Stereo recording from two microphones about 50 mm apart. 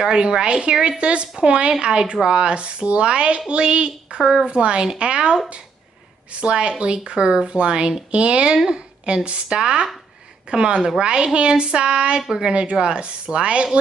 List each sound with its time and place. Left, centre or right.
0.0 s speech: centre
4.2 s a woman's voice: centre
4.5 s speech: right
6.4 s speech: right